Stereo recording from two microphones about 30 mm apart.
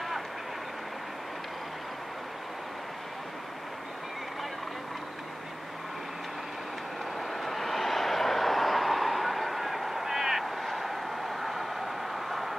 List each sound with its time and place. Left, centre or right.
7.2 s vehicle: centre